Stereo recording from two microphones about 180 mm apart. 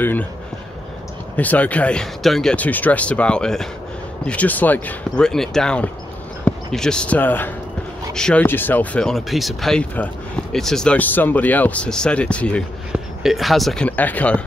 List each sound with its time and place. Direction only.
0.0 s speech: 10° left (ahead or behind)
1.3 s speech: 10° left (ahead or behind)